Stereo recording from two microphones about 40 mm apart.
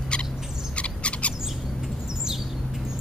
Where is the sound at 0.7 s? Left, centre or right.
Left.